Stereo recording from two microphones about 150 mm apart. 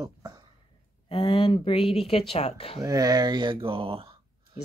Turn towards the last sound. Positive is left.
turn(degrees=-35)  # may be behind; listen again after turning